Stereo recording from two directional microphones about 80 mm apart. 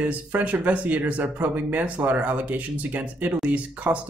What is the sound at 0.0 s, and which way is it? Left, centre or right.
Speech, right.